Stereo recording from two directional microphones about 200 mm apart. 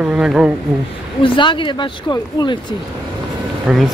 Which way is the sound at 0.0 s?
5° right (ahead or behind).